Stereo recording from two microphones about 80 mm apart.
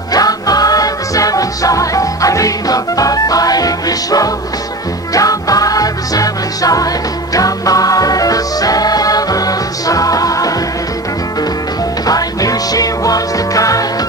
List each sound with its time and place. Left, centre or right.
0.1 s music: left
12.1 s music: left